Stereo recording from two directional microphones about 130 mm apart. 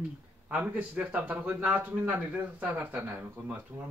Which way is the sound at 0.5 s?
10° right (ahead or behind).